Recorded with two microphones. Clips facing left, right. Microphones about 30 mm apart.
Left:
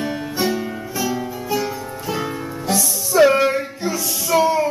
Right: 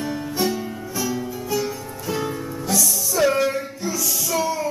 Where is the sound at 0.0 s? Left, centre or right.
Left.